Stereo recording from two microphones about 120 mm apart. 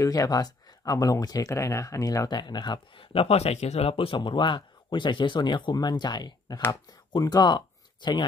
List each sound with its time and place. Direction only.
0.0 s speech: 30° left (ahead or behind)